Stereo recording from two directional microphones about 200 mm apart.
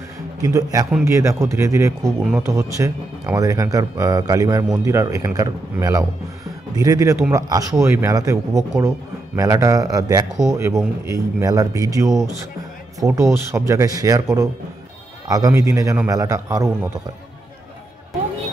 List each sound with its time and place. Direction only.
0.4 s speech: 15° right (ahead or behind)